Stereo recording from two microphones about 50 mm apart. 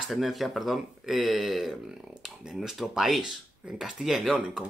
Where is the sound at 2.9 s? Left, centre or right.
Centre.